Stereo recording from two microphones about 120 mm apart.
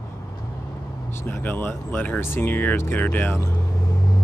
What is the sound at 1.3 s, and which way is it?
Speech, 15° left (ahead or behind).